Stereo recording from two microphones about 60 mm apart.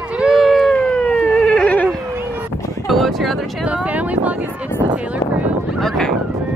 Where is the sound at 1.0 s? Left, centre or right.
Left.